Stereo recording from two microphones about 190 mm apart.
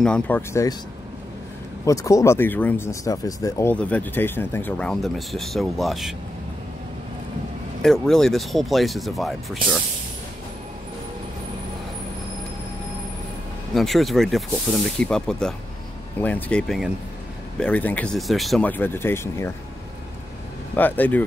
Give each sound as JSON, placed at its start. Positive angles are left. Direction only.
{"t": 0.0, "sound": "speech", "side_deg": 5}
{"t": 0.5, "sound": "speech", "side_deg": 15}
{"t": 1.9, "sound": "speech", "side_deg": 15}
{"t": 7.8, "sound": "speech", "side_deg": 0}
{"t": 13.7, "sound": "speech", "side_deg": 0}
{"t": 20.7, "sound": "speech", "side_deg": 10}